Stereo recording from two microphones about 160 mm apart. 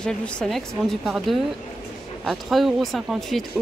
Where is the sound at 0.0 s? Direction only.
5° left (ahead or behind).